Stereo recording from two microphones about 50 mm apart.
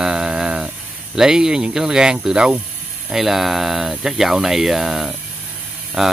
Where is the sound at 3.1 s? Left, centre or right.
Centre.